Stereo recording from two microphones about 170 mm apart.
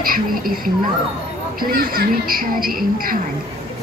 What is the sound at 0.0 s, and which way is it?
Speech, 55° right (ahead or behind).